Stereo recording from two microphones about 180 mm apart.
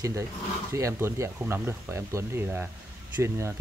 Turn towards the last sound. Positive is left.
turn(degrees=-15)  # may be behind; listen again after turning